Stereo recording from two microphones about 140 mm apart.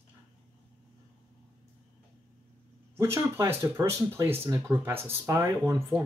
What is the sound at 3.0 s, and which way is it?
Speech, 20° right (ahead or behind).